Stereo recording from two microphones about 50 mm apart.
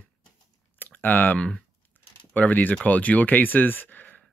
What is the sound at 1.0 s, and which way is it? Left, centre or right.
Speech, left.